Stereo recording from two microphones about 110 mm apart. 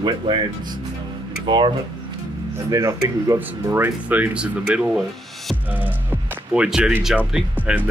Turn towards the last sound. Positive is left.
turn(degrees=-15)  # may be behind; listen again after turning